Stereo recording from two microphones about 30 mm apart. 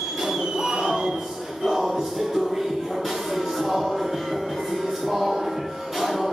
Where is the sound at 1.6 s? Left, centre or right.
Centre.